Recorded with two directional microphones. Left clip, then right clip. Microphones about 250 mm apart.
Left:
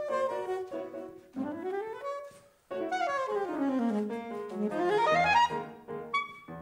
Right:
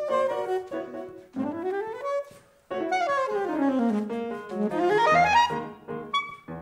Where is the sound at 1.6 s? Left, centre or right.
Centre.